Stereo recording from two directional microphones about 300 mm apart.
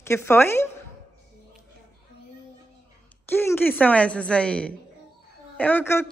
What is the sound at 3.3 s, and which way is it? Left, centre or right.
A woman's voice, centre.